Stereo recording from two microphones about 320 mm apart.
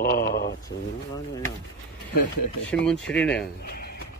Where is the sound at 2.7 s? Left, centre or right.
Centre.